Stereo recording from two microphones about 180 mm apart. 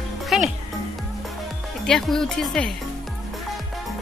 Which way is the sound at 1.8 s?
Centre (ahead or behind).